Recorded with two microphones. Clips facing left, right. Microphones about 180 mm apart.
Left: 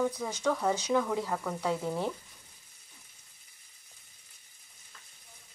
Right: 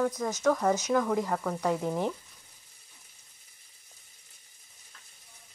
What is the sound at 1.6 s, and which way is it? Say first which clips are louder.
Frying: right 2 dB; 15° right (ahead or behind).